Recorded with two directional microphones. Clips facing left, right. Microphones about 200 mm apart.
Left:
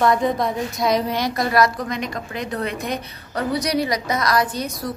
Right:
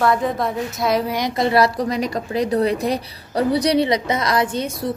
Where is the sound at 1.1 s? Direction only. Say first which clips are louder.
Right 2 dB; 20° right (ahead or behind).